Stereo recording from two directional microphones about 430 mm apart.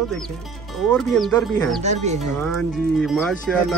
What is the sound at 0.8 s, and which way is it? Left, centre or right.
Speech, centre.